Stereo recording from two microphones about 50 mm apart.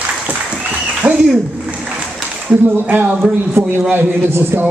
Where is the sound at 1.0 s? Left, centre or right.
Right.